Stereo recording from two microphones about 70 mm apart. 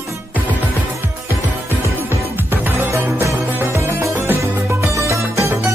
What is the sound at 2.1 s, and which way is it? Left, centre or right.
Music, right.